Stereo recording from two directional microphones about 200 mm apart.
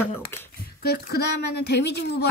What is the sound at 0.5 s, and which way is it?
A woman's voice, 50° left (ahead or behind).